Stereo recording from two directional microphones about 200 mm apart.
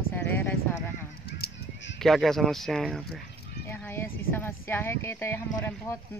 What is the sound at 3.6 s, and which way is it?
Speech, 10° left (ahead or behind).